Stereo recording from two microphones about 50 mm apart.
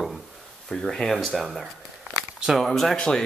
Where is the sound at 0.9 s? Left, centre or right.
Centre.